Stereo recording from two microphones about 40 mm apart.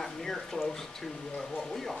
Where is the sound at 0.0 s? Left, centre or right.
Centre.